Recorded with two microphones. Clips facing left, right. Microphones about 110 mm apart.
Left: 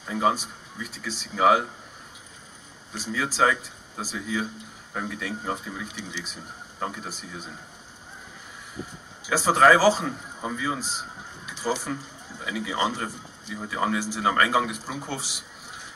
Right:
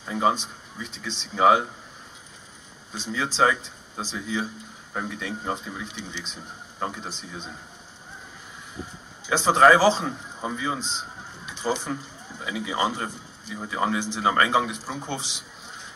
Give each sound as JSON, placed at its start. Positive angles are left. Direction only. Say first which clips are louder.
{"t": 0.1, "sound": "speech", "louder": "right 1 dB", "side_deg": -25}
{"t": 2.9, "sound": "speech", "louder": "even", "side_deg": -25}
{"t": 9.3, "sound": "speech", "louder": "right 1 dB", "side_deg": -25}